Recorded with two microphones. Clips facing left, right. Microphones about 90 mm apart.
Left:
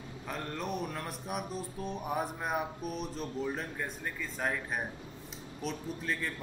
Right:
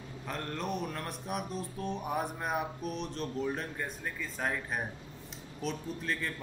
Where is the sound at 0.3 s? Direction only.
Centre (ahead or behind).